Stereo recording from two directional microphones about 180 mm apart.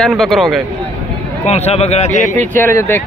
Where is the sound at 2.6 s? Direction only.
15° left (ahead or behind).